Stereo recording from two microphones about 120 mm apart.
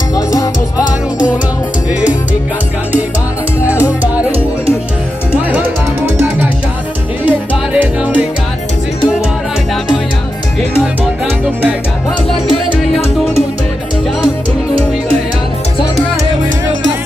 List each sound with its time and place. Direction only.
0.1 s music: 30° left (ahead or behind)
3.6 s music: 15° right (ahead or behind)
7.2 s music: 10° right (ahead or behind)